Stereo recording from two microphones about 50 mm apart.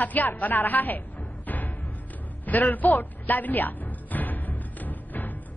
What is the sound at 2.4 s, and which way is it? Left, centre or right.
Music, left.